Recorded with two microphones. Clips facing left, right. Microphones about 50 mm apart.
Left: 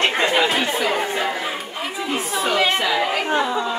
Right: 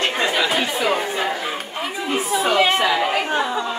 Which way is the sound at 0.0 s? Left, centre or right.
Left.